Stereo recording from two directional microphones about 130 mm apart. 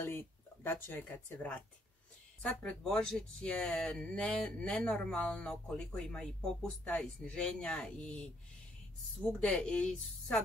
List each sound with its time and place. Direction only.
0.0 s speech: 20° left (ahead or behind)
9.4 s speech: 5° left (ahead or behind)